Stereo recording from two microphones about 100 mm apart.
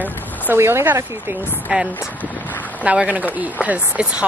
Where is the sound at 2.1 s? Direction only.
15° left (ahead or behind).